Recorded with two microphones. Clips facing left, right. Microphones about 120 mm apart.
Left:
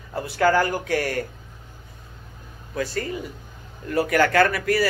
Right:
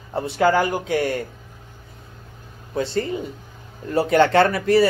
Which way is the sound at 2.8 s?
25° right (ahead or behind).